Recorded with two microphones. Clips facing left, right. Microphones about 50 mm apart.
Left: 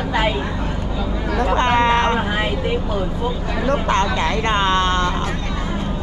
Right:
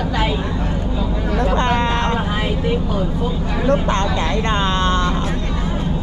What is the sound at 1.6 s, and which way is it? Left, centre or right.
Speech, left.